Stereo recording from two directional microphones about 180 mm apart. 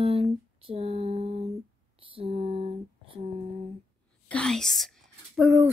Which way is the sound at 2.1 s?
30° right (ahead or behind).